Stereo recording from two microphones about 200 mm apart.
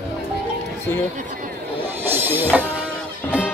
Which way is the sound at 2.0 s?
10° right (ahead or behind).